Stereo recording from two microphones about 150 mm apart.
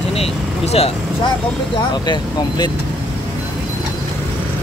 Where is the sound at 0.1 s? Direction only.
40° left (ahead or behind).